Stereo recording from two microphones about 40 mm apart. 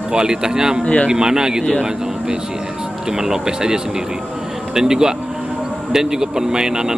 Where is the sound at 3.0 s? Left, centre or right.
Centre.